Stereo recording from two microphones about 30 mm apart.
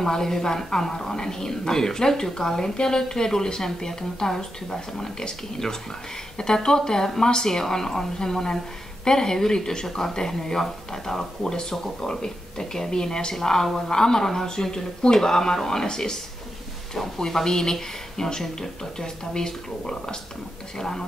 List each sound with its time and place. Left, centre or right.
0.0 s speech: centre
6.3 s speech: left